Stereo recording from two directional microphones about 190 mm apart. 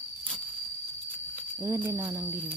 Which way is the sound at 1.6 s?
10° right (ahead or behind).